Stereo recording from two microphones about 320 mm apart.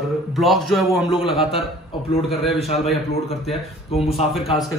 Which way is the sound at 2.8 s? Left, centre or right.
Centre.